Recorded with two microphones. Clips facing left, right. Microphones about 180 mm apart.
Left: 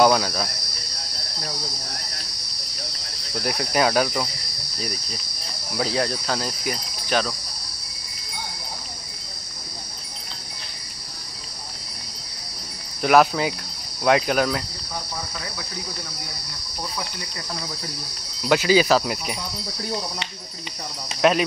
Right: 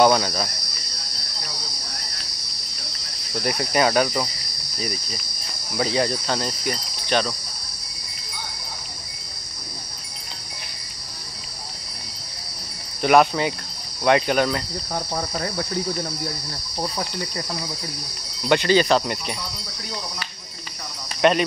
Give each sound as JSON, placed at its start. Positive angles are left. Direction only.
{"t": 0.0, "sound": "cricket", "side_deg": 0}
{"t": 3.4, "sound": "cricket", "side_deg": 0}
{"t": 5.8, "sound": "cricket", "side_deg": 0}
{"t": 13.0, "sound": "cricket", "side_deg": 0}
{"t": 15.0, "sound": "cricket", "side_deg": -50}
{"t": 18.5, "sound": "cricket", "side_deg": 5}
{"t": 21.2, "sound": "cricket", "side_deg": 0}